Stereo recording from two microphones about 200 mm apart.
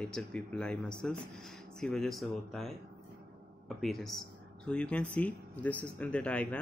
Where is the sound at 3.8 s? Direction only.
Centre (ahead or behind).